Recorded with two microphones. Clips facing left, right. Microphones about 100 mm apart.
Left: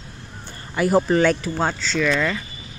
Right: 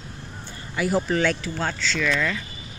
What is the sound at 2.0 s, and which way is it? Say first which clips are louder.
Speech: left 4 dB; 25° left (ahead or behind).